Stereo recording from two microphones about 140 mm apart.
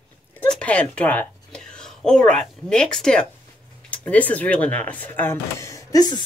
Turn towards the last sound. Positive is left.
turn(degrees=30)  # may be behind; listen again after turning